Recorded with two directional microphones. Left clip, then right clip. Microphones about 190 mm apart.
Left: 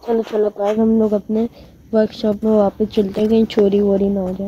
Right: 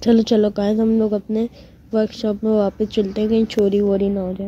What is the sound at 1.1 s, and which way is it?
Speech, centre (ahead or behind).